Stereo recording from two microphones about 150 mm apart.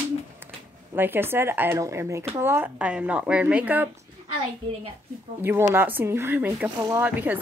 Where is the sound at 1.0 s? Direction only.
15° right (ahead or behind).